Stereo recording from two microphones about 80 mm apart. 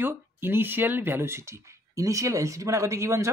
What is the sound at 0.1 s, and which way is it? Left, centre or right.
Speech, right.